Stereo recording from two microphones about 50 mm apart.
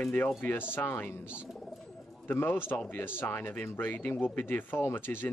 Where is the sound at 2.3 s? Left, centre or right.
Left.